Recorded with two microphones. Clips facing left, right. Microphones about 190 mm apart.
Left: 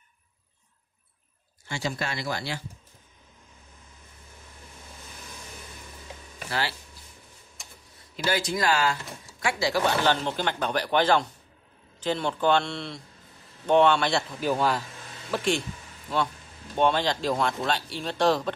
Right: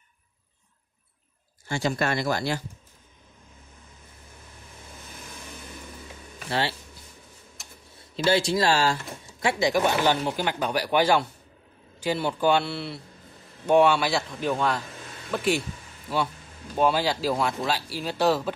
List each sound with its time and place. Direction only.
1.7 s speech: 50° right (ahead or behind)
8.2 s speech: 25° right (ahead or behind)
9.4 s speech: 20° right (ahead or behind); by 18.5 s 5° right (ahead or behind)